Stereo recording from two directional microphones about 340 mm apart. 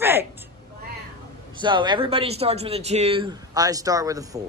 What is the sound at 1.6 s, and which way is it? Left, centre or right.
Speech, centre.